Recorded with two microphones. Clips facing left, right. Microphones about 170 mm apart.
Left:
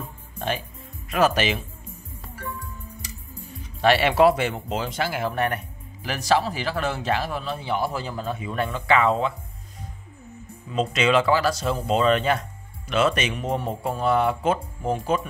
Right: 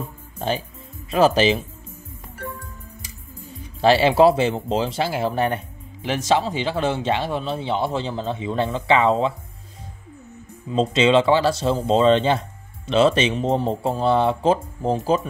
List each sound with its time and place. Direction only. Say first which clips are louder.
0.4 s speech: right 3 dB; 30° right (ahead or behind)
3.8 s speech: right 3 dB; 30° right (ahead or behind)
10.7 s speech: right 4 dB; 30° right (ahead or behind)